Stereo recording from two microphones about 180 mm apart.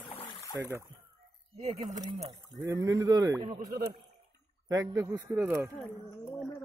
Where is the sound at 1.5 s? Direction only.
35° right (ahead or behind).